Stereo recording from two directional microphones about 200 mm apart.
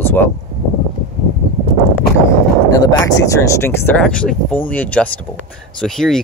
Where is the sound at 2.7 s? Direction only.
15° left (ahead or behind).